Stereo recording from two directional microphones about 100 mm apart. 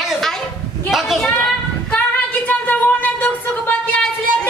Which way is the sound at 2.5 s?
15° left (ahead or behind).